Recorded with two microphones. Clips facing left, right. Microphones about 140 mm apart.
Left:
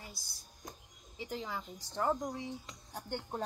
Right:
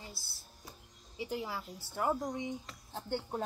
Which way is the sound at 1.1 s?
10° right (ahead or behind).